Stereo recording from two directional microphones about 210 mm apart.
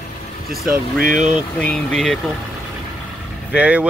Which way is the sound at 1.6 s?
5° left (ahead or behind).